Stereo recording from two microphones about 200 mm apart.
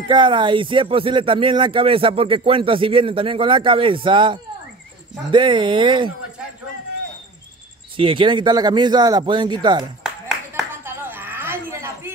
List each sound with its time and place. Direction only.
0.1 s speech: 25° right (ahead or behind)
7.9 s speech: 25° right (ahead or behind)
10.2 s clapping: 5° right (ahead or behind)